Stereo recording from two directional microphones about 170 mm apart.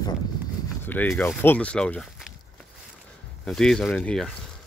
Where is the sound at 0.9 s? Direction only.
10° left (ahead or behind).